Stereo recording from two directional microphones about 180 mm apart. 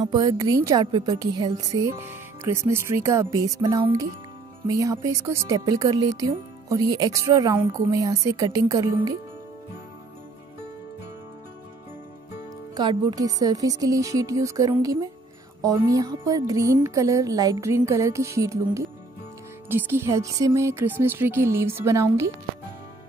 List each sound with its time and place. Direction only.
0.0 s a woman's voice: 20° right (ahead or behind)
12.7 s a woman's voice: 20° right (ahead or behind)